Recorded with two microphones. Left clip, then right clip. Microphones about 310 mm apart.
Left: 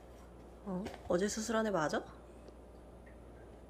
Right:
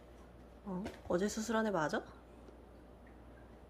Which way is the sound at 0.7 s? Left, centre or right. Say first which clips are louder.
Left 2 dB; centre.